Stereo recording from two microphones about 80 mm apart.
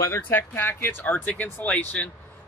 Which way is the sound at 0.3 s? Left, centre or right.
Left.